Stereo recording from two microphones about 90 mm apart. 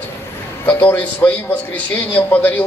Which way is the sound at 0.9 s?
20° left (ahead or behind).